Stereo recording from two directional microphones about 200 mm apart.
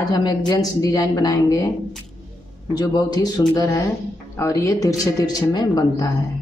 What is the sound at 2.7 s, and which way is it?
A woman's voice, 20° left (ahead or behind).